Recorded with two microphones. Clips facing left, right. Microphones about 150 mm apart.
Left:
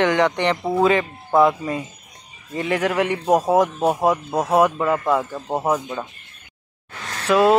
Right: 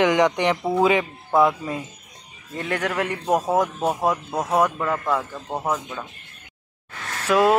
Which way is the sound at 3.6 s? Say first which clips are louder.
Left 4 dB; 20° left (ahead or behind).